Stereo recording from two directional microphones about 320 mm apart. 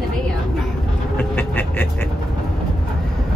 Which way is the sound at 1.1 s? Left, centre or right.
Centre.